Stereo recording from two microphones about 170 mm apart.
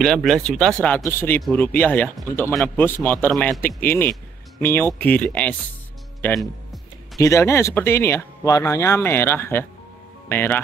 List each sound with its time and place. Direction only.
0.0 s speech: 5° left (ahead or behind)
7.2 s speech: 15° left (ahead or behind)